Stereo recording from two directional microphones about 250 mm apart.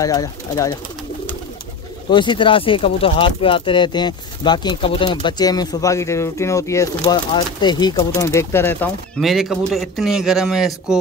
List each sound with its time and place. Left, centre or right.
0.0 s speech: centre
2.0 s speech: centre